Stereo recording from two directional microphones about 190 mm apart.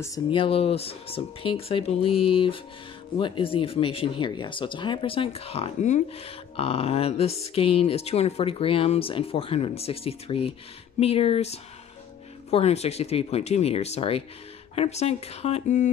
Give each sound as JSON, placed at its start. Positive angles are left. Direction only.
{"t": 0.0, "sound": "speech", "side_deg": 20}